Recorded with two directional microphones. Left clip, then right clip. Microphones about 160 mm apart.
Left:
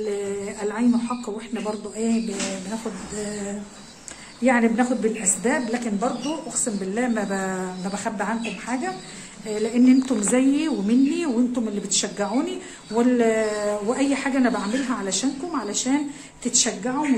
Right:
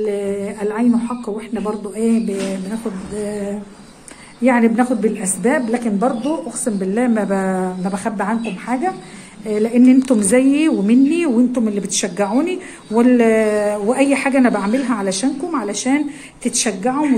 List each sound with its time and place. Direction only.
0.0 s speech: 15° right (ahead or behind)
4.4 s a woman's voice: 20° right (ahead or behind)